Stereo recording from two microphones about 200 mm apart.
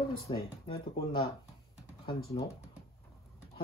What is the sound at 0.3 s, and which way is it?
Speech, 25° left (ahead or behind).